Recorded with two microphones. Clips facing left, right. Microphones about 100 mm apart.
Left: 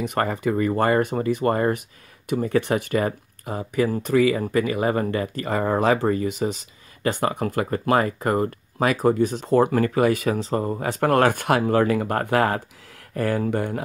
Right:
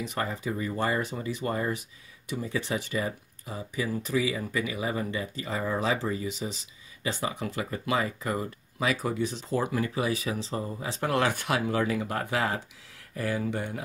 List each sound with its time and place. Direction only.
0.0 s speech: 60° left (ahead or behind)